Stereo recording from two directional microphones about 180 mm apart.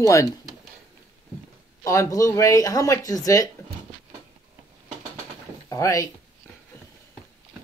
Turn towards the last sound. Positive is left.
turn(degrees=20)  # may be behind; listen again after turning